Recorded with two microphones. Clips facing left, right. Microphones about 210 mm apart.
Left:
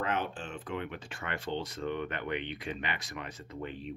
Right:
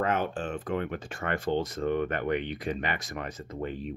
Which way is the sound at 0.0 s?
45° right (ahead or behind).